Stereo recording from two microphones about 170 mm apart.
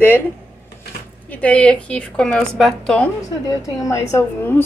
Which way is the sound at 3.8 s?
20° left (ahead or behind).